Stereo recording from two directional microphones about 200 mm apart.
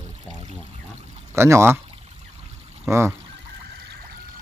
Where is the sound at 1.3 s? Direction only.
15° right (ahead or behind).